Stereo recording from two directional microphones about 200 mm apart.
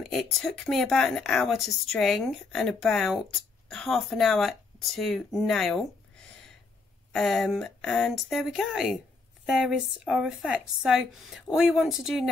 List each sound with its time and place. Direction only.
0.0 s speech: centre (ahead or behind)